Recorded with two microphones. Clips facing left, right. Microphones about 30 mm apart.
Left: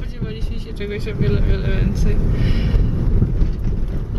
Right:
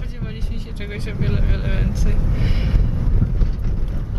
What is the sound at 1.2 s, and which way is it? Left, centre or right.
Speech, centre.